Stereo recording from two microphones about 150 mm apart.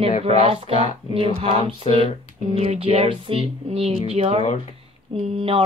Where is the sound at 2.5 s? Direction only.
40° right (ahead or behind).